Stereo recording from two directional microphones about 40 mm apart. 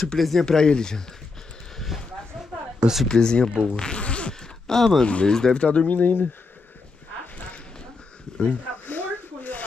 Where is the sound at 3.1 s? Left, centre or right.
Centre.